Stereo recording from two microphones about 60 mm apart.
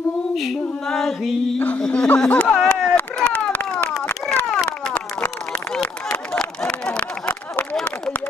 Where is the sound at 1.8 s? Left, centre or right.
Centre.